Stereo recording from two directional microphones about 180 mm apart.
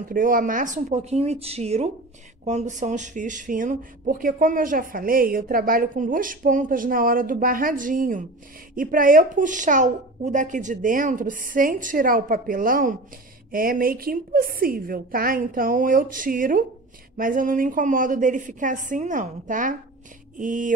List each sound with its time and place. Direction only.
0.1 s speech: 50° right (ahead or behind)